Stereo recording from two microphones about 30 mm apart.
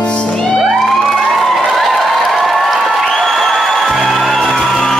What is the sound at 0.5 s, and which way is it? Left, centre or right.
Music, centre.